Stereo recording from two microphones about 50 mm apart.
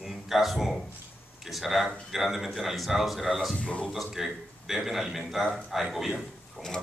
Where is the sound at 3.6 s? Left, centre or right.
Left.